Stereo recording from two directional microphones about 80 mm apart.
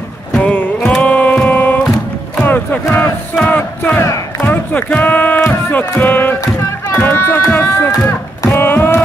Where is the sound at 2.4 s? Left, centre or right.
Left.